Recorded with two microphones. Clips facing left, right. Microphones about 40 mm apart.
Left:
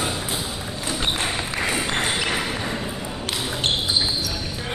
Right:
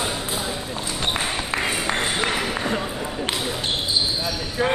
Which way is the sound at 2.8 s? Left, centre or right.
Right.